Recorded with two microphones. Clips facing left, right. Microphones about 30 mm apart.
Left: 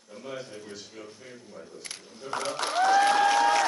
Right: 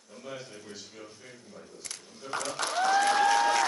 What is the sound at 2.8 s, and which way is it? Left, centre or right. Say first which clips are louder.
Applause: left 3 dB; centre.